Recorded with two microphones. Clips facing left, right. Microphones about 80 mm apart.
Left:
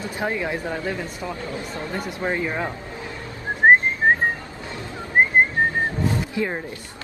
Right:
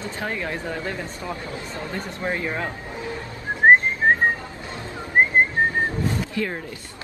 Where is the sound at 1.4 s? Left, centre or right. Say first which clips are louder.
Left 2 dB; left.